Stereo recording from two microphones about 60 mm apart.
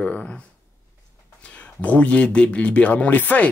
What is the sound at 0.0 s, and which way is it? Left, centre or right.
Speech, centre.